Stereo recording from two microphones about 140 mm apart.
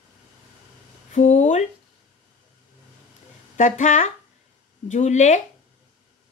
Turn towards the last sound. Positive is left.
turn(degrees=60)  # may be behind; listen again after turning